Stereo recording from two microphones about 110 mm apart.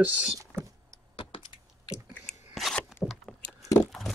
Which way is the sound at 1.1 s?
45° left (ahead or behind).